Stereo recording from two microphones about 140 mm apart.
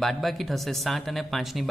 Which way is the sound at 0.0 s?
Centre (ahead or behind).